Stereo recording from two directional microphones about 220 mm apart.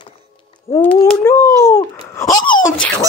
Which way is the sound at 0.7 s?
10° left (ahead or behind).